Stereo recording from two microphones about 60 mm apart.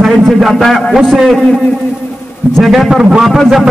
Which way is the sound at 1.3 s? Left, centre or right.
Centre.